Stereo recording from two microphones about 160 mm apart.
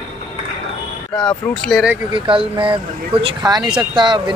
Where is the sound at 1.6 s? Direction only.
Centre (ahead or behind).